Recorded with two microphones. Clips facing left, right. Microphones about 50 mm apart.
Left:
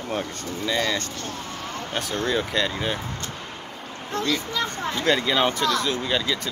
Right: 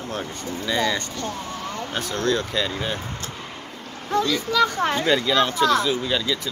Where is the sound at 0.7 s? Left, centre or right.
Centre.